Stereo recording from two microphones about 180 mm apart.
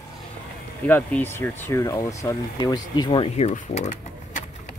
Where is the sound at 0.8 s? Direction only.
10° left (ahead or behind); by 4.4 s 40° left (ahead or behind).